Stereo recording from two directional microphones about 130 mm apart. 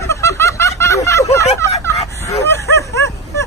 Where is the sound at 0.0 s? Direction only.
20° left (ahead or behind).